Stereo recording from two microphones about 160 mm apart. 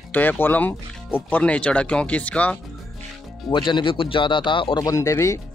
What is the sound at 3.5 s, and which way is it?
Speech, 30° left (ahead or behind).